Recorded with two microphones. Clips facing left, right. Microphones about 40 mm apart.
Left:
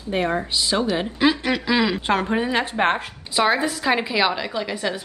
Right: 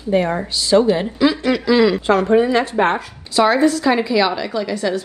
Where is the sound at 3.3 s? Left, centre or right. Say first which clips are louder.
Right 6 dB; centre.